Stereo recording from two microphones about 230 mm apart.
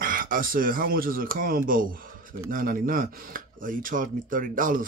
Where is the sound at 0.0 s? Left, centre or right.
Right.